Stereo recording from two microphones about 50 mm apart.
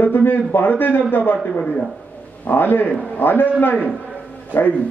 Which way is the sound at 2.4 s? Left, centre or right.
Left.